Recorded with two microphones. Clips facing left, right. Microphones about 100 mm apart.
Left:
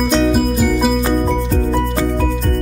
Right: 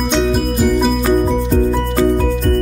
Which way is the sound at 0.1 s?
5° left (ahead or behind).